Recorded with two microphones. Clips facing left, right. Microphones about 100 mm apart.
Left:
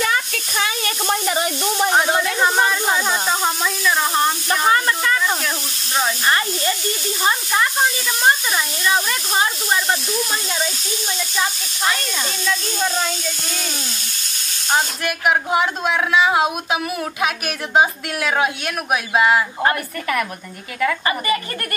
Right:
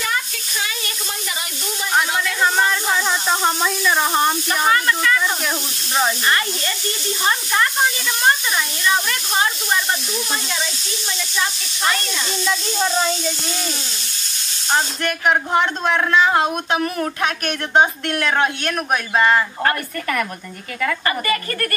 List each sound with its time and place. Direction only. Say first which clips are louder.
0.0 s a sound: left 3 dB; 55° left (ahead or behind)
2.0 s speech: right 2 dB; 40° left (ahead or behind)
2.4 s speech: right 1 dB; 15° left (ahead or behind)
3.3 s speech: right 1 dB; centre (ahead or behind)
4.5 s speech: left 1 dB; 25° left (ahead or behind)
14.7 s speech: even; 5° left (ahead or behind)
21.0 s a woman's voice: left 1 dB; 20° left (ahead or behind)